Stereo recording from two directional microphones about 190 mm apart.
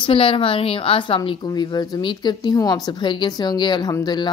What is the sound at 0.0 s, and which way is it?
A woman's voice, 30° left (ahead or behind).